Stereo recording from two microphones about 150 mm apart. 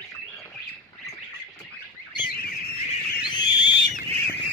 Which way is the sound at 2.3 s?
90° left.